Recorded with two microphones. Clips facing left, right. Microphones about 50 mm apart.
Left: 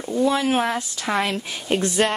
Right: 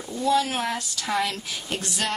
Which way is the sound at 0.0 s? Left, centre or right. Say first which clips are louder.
Left 2 dB; left.